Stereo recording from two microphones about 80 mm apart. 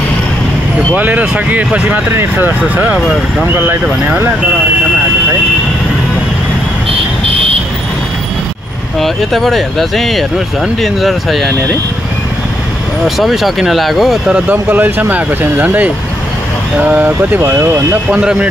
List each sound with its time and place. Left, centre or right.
0.9 s speech: right
9.0 s speech: centre
13.0 s speech: centre
14.5 s speech: right
18.2 s speech: centre